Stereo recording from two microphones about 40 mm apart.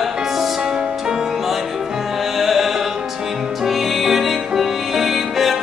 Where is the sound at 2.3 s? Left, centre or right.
Centre.